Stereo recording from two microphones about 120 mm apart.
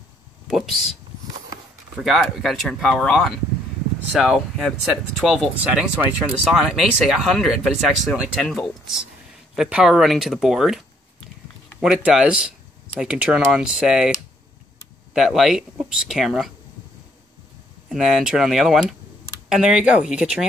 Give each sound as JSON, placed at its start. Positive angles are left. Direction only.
{"t": 0.5, "sound": "speech", "side_deg": 0}
{"t": 2.0, "sound": "speech", "side_deg": 0}
{"t": 11.8, "sound": "speech", "side_deg": -5}
{"t": 15.1, "sound": "speech", "side_deg": 0}
{"t": 17.8, "sound": "speech", "side_deg": -5}